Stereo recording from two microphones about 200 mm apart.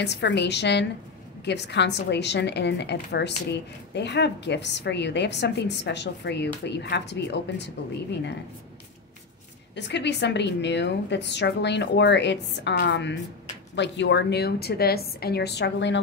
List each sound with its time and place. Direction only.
0.0 s a woman's voice: 60° left (ahead or behind)
9.8 s a woman's voice: 60° left (ahead or behind)